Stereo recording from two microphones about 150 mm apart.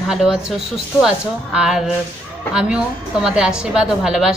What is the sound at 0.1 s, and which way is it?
Speech, 5° right (ahead or behind).